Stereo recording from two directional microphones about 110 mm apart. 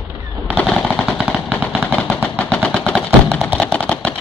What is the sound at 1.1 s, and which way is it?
Machine gun, 10° right (ahead or behind).